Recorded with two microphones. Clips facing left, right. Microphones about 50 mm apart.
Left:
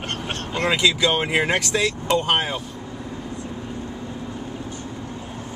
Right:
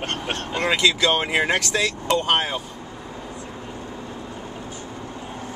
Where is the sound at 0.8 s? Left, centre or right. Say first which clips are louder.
Right 1 dB; centre.